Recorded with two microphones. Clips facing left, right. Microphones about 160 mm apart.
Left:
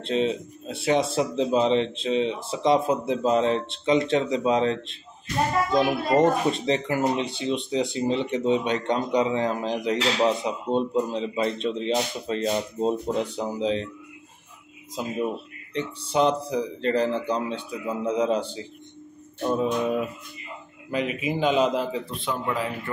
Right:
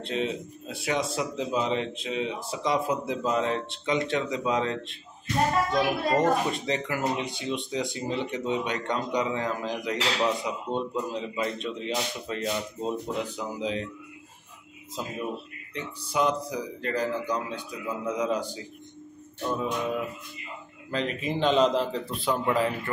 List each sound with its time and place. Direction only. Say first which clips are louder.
0.0 s speech: left 5 dB; 25° left (ahead or behind)
15.0 s a man's voice: left 4 dB; 15° left (ahead or behind)
15.7 s speech: left 5 dB; 30° left (ahead or behind)
20.9 s a man's voice: left 3 dB; 10° left (ahead or behind)